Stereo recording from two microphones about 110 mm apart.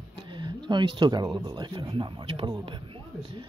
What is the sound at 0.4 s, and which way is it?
Speech, 45° right (ahead or behind).